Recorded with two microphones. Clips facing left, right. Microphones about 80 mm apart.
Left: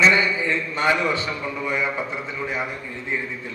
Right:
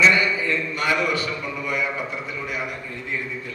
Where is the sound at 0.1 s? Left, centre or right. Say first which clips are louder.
Left 1 dB; left.